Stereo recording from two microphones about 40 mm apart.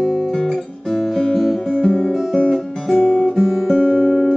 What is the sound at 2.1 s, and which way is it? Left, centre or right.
Guitar, centre.